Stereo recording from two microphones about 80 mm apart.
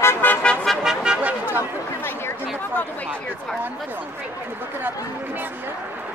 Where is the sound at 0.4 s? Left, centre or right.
Centre.